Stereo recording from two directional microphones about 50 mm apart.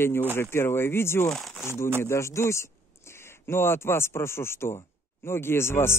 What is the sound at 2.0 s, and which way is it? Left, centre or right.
Speech, left.